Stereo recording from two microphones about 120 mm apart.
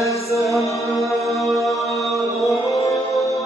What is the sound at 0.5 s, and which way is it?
Music, 25° left (ahead or behind).